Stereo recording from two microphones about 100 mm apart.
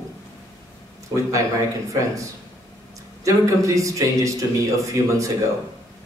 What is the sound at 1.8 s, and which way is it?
Speech, 30° right (ahead or behind).